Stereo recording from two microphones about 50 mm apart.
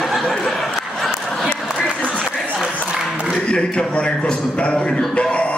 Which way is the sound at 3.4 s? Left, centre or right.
Centre.